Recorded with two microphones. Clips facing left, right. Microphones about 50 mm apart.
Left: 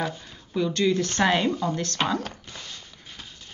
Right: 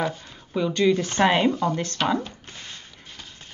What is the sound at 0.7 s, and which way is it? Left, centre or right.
Speech, centre.